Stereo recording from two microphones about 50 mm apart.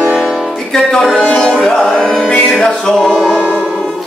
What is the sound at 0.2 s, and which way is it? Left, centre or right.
Music, centre.